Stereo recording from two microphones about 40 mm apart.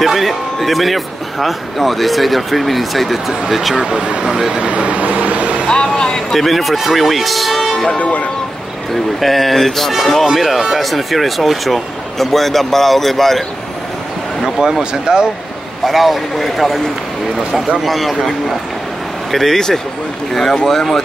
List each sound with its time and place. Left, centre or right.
0.0 s speech: centre
4.6 s vehicle: right
5.7 s vehicle: centre
6.3 s speech: centre
8.0 s speech: left
8.9 s speech: centre
10.2 s speech: centre
14.4 s speech: centre
15.8 s speech: centre
19.3 s speech: centre